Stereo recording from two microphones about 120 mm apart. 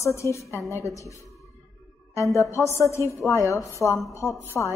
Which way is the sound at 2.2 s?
25° left (ahead or behind).